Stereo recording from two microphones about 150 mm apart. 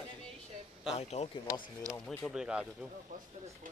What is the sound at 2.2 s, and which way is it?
Speech, 5° right (ahead or behind).